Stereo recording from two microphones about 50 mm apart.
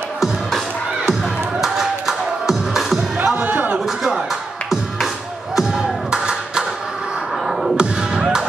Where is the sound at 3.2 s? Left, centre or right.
Right.